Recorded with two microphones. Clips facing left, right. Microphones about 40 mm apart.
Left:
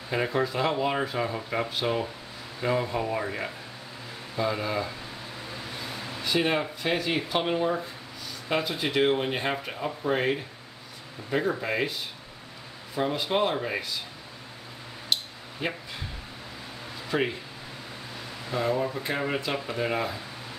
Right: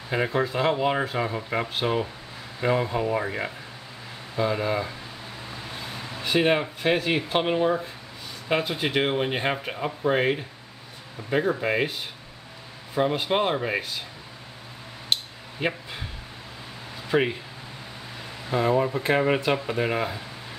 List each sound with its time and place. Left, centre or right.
0.1 s speech: centre
1.7 s speech: right
6.2 s speech: right
8.5 s speech: right
13.0 s speech: right
15.6 s speech: right
17.1 s speech: right
18.5 s speech: right